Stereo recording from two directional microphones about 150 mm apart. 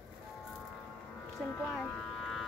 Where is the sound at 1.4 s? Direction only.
10° left (ahead or behind).